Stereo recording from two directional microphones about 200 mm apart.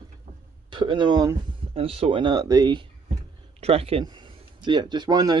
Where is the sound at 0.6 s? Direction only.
25° right (ahead or behind).